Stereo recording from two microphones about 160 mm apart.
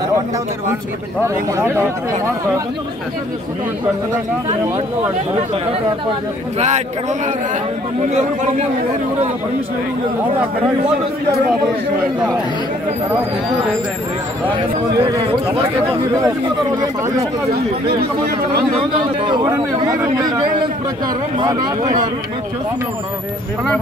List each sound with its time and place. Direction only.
1.2 s speech: 15° right (ahead or behind)
6.6 s a man's voice: 45° right (ahead or behind)
14.5 s speech: 25° right (ahead or behind)
17.5 s speech: 75° right (ahead or behind)
18.8 s speech: 30° right (ahead or behind)